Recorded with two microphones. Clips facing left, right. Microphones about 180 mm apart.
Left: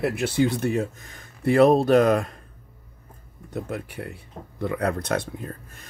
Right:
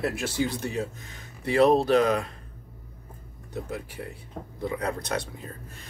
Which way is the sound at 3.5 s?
60° left (ahead or behind).